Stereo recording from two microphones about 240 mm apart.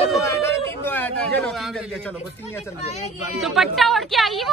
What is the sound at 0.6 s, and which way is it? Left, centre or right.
Speech, centre.